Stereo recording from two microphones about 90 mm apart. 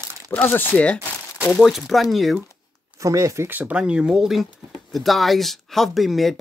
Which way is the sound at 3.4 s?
20° right (ahead or behind).